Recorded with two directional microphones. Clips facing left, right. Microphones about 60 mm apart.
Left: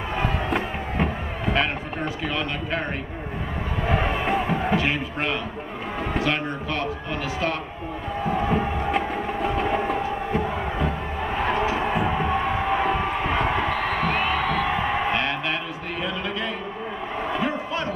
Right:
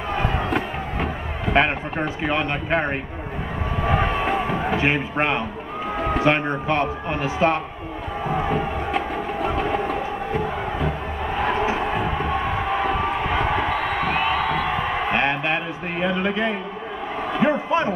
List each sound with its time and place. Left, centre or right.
0.2 s crowd: centre
1.5 s speech: right
3.8 s a sound: centre
4.7 s speech: right
8.3 s music: centre
11.8 s crowd: centre
15.1 s a sound: right